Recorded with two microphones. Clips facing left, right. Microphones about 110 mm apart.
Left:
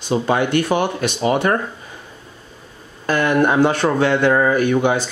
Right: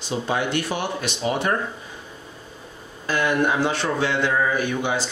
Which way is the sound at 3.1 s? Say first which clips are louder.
Left 5 dB; 55° left (ahead or behind).